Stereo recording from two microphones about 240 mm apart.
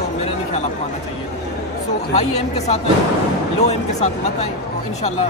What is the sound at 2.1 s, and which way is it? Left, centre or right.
Speech, left.